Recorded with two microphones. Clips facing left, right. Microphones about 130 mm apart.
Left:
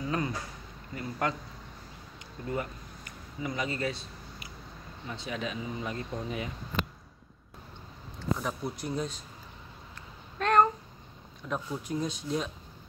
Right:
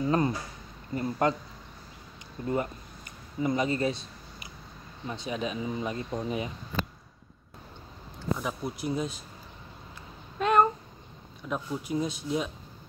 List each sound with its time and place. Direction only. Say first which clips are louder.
0.0 s a sound: right 6 dB; 35° right (ahead or behind)
0.9 s speech: right 6 dB; 35° right (ahead or behind)
2.4 s speech: right 4 dB; 30° right (ahead or behind)
5.0 s speech: right 3 dB; 20° right (ahead or behind)
8.4 s speech: right 1 dB; 5° right (ahead or behind)
10.4 s a sound: right 1 dB; 5° right (ahead or behind)
11.4 s speech: right 2 dB; 5° right (ahead or behind)